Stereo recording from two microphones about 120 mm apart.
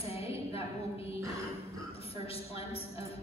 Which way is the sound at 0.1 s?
55° left (ahead or behind).